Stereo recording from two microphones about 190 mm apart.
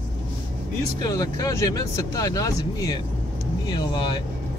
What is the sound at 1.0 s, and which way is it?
Speech, 20° left (ahead or behind).